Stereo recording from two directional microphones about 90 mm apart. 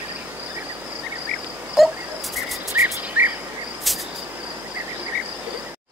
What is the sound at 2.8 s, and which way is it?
Cricket, 20° right (ahead or behind).